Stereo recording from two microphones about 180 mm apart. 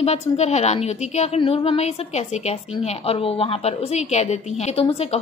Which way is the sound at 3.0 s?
30° left (ahead or behind).